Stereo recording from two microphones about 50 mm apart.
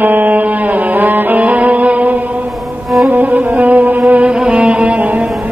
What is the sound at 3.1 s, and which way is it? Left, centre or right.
Music, right.